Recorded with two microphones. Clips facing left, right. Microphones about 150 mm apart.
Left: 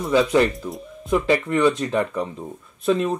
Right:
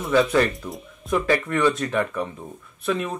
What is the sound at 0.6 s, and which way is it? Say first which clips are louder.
Speech: left 3 dB; 10° left (ahead or behind).